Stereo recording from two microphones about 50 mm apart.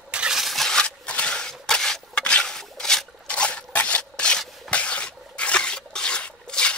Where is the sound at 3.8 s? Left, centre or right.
Left.